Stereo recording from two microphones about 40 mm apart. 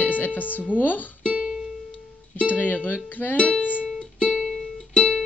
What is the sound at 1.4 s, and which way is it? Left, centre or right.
Music, centre.